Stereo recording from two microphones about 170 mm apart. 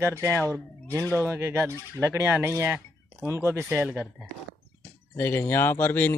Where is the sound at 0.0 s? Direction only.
15° right (ahead or behind).